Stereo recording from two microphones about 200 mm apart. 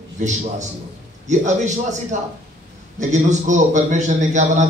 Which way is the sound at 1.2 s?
35° right (ahead or behind).